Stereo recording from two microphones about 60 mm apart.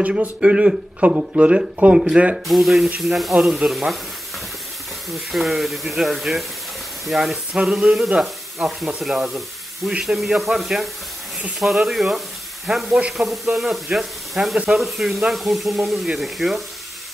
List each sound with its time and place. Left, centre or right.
0.0 s speech: centre
2.4 s speech: centre
3.7 s speech: centre
5.1 s speech: centre
7.5 s speech: centre